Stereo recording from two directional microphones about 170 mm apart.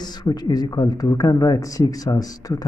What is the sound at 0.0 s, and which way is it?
Speech, 25° left (ahead or behind).